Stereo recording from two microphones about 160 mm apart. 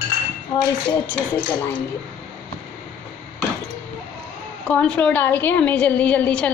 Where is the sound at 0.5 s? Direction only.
35° left (ahead or behind).